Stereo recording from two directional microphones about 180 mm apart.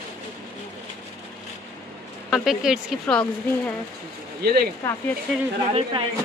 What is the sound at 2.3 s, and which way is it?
Speech, centre (ahead or behind).